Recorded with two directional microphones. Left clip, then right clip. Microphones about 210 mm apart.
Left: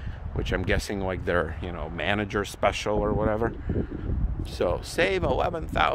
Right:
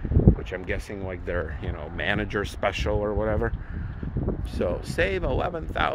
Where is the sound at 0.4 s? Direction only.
20° left (ahead or behind).